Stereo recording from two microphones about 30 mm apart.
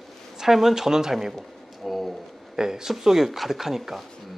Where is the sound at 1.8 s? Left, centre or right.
Centre.